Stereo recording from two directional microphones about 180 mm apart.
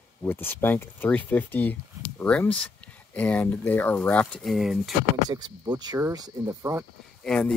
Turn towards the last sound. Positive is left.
turn(degrees=5)  # may be behind; listen again after turning